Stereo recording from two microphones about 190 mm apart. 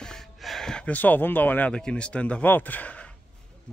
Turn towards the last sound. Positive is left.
turn(degrees=5)  # may be behind; listen again after turning